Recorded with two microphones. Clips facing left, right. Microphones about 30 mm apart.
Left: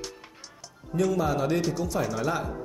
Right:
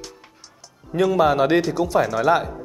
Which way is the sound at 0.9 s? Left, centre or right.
Right.